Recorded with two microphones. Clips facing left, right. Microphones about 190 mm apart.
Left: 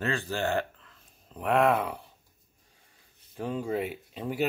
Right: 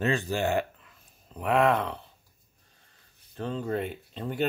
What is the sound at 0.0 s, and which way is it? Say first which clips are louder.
Speech: right 3 dB; 15° right (ahead or behind).